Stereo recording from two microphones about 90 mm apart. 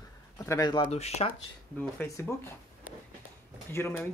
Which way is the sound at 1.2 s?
90° left.